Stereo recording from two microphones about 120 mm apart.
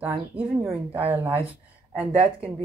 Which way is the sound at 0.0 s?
15° right (ahead or behind).